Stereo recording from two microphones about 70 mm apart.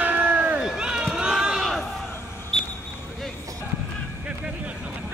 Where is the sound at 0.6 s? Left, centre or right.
Centre.